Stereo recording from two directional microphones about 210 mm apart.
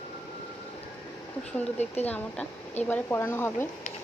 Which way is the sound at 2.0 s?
10° left (ahead or behind).